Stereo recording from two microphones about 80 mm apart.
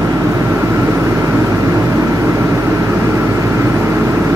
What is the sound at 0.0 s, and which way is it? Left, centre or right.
Vehicle, right.